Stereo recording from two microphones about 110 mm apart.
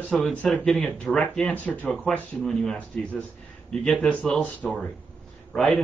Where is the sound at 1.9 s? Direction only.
5° left (ahead or behind).